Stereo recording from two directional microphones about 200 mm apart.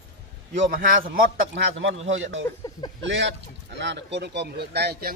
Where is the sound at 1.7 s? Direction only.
65° right (ahead or behind).